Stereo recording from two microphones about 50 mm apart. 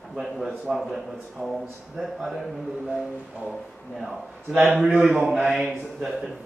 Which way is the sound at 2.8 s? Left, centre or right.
Centre.